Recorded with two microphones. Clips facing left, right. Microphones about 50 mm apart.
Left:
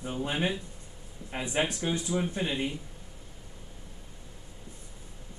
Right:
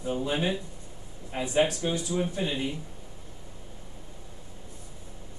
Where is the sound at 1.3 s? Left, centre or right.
Left.